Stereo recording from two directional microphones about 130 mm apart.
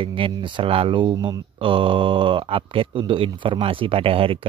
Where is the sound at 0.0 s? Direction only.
40° right (ahead or behind).